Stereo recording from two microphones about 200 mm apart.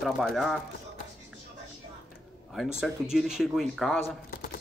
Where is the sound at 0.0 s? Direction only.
Centre (ahead or behind).